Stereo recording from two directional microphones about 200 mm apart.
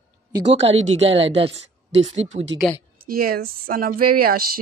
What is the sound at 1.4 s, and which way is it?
Speech, 30° right (ahead or behind).